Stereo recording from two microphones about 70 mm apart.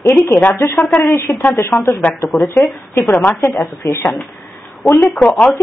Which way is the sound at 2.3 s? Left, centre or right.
Centre.